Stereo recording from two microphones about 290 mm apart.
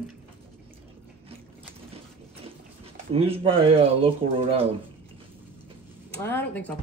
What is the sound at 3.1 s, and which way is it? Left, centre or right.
Speech, centre.